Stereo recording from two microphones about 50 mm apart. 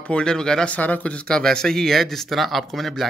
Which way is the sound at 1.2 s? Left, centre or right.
Centre.